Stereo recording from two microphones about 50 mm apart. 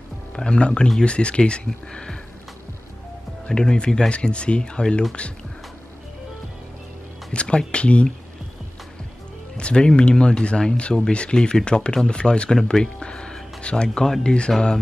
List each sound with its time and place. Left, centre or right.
0.4 s speech: centre
3.4 s speech: centre
7.3 s speech: left
9.6 s speech: centre